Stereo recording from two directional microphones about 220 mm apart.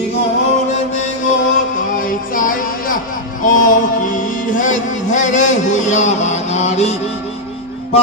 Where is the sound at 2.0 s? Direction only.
40° left (ahead or behind).